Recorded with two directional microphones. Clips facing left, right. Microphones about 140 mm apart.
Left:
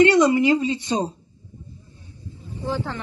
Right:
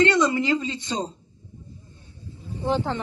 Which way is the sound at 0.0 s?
15° left (ahead or behind).